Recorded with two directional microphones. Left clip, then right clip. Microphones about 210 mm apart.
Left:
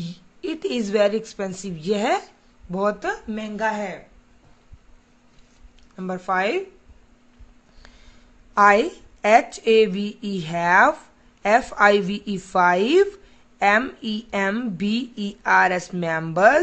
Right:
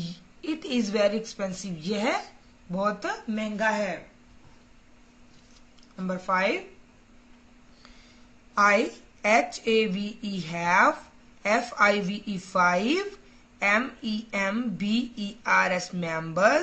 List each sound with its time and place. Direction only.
0.0 s a man's voice: 55° left (ahead or behind)
5.9 s speech: 55° left (ahead or behind)
8.5 s speech: 60° left (ahead or behind)